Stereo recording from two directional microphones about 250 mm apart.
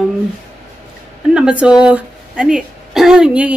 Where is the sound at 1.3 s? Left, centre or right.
Centre.